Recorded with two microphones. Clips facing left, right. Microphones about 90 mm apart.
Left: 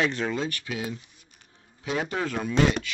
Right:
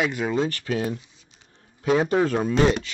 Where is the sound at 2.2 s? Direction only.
30° right (ahead or behind).